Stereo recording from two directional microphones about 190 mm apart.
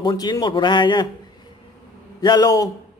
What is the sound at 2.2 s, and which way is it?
Speech, 20° left (ahead or behind).